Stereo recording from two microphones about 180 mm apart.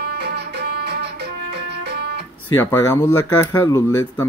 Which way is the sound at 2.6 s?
10° left (ahead or behind).